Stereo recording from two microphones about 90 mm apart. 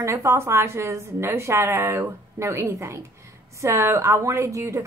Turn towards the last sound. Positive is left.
turn(degrees=-30)  # may be behind; listen again after turning